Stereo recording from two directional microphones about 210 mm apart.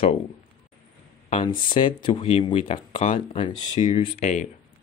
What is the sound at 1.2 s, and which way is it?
Speech, 25° left (ahead or behind).